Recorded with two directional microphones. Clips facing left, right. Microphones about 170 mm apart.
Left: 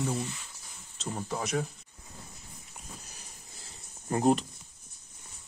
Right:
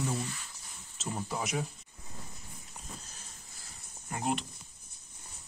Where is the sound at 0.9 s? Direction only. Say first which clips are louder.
Left 1 dB; centre (ahead or behind).